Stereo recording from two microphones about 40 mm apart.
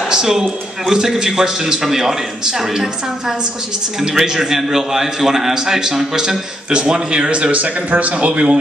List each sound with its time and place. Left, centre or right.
0.1 s a man's voice: centre; by 8.5 s right